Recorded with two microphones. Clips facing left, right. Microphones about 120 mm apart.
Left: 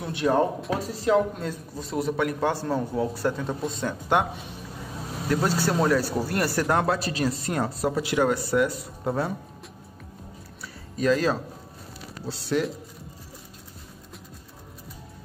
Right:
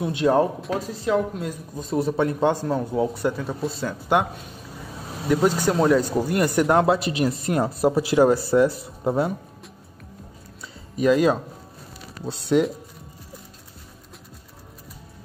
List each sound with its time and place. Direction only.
0.0 s speech: 20° right (ahead or behind)
0.6 s speech: centre (ahead or behind)
1.8 s speech: 25° right (ahead or behind)
3.3 s speech: 5° right (ahead or behind)
5.3 s speech: 15° right (ahead or behind)
11.0 s speech: 15° right (ahead or behind)